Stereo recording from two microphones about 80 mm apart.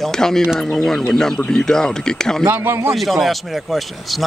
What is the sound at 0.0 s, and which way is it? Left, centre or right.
Speech, centre.